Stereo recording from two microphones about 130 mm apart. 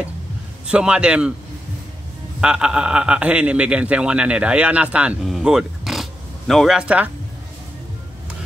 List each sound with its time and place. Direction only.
0.7 s a man's voice: 5° right (ahead or behind)
2.4 s a man's voice: 5° right (ahead or behind)